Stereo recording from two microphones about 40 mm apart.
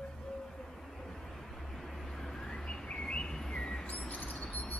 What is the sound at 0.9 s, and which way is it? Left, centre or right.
Vehicle, centre.